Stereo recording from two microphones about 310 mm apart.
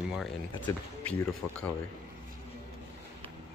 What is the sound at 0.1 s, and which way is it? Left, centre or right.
Speech, centre.